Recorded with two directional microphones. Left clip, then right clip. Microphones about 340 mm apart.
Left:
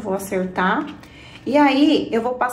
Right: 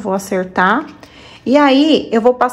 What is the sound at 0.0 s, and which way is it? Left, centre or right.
A woman's voice, right.